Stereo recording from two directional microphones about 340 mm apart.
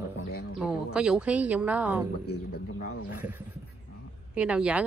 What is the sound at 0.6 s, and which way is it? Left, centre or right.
Speech, centre.